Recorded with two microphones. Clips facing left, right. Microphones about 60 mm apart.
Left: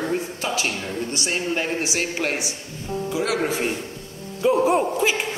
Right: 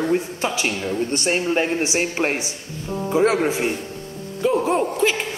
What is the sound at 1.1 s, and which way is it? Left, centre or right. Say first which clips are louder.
Speech: right 5 dB; right.